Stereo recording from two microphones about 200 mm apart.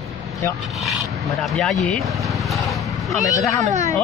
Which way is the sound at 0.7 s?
Centre (ahead or behind).